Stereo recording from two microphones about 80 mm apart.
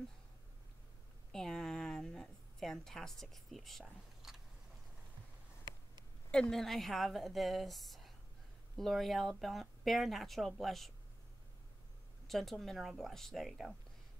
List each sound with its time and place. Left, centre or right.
1.3 s a sound: centre
6.5 s speech: centre
12.3 s speech: centre